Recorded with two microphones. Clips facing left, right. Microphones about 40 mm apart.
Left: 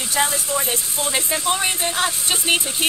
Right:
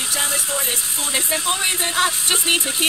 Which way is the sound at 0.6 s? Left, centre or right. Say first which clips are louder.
Left 1 dB; centre.